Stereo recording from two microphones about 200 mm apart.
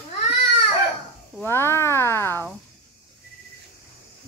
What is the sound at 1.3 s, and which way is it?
Speech, 10° left (ahead or behind).